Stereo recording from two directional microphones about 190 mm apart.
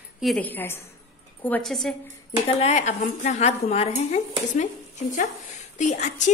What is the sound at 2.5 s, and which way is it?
A woman's voice, 35° left (ahead or behind).